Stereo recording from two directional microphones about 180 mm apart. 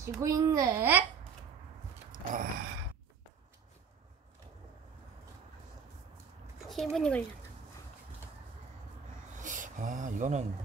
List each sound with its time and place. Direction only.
0.0 s a child's voice: 15° right (ahead or behind)
2.1 s a sound: 50° right (ahead or behind)
6.7 s speech: centre (ahead or behind)
9.4 s speech: 45° right (ahead or behind)